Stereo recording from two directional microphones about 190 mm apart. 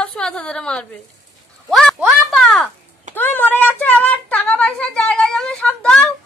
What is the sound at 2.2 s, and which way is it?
Speech, centre (ahead or behind).